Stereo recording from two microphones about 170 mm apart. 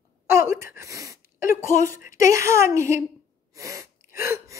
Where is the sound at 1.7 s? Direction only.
50° left (ahead or behind).